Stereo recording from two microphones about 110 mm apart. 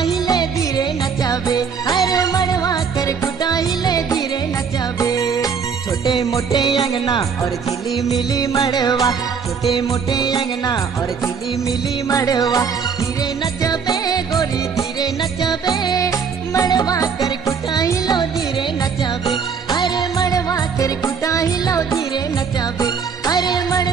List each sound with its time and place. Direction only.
0.0 s music: 40° left (ahead or behind)
6.5 s music: 45° left (ahead or behind)
8.4 s music: 35° left (ahead or behind)
12.1 s music: 35° left (ahead or behind)
19.2 s music: 40° left (ahead or behind)